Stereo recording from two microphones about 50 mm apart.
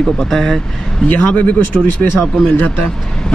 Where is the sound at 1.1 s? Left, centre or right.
Left.